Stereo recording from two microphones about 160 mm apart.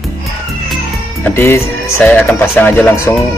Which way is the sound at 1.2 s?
15° left (ahead or behind).